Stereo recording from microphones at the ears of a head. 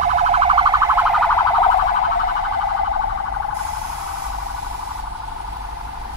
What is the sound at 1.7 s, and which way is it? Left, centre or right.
Car alarm, left.